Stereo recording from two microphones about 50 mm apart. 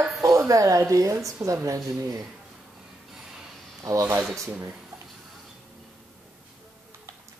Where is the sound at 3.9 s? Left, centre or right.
Right.